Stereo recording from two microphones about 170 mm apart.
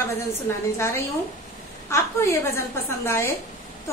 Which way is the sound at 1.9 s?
15° left (ahead or behind).